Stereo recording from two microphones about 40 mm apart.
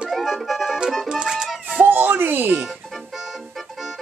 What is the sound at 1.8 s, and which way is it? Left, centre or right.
Music, right.